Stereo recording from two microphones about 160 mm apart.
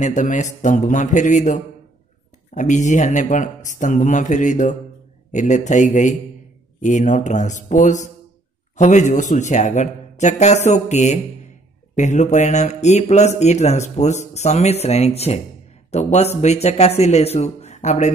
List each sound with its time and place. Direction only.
0.0 s speech: 50° left (ahead or behind)